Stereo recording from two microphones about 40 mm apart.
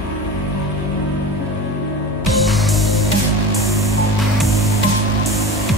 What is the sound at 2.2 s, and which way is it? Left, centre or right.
Music, centre.